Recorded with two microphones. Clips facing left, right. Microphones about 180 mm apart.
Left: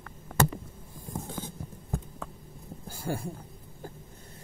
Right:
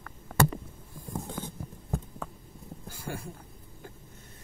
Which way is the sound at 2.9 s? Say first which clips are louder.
Left 6 dB; 30° left (ahead or behind).